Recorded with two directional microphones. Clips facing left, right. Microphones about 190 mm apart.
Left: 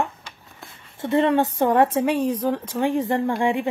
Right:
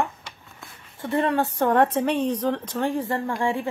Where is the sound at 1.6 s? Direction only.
10° left (ahead or behind).